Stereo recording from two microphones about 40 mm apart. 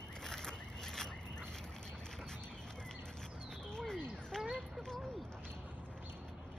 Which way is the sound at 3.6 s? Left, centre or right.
Centre.